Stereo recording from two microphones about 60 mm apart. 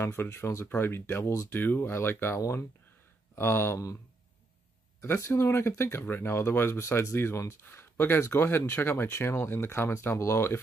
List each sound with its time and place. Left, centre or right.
0.0 s speech: left
5.3 s speech: left